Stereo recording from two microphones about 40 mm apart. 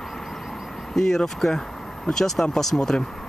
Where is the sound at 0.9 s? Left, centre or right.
Centre.